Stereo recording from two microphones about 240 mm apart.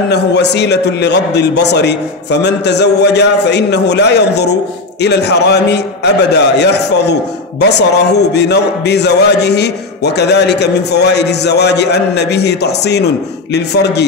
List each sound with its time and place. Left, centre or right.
0.1 s a man's voice: left